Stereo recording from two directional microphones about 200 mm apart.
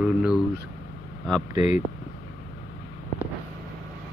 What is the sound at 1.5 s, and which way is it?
Speech, 35° left (ahead or behind).